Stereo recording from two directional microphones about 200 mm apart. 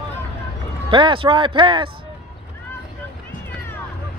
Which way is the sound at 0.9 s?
25° right (ahead or behind).